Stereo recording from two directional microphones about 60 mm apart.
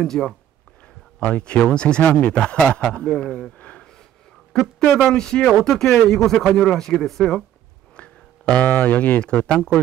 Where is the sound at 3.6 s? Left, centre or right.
Left.